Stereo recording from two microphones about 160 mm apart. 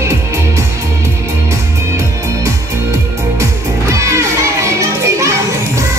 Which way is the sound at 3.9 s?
20° right (ahead or behind).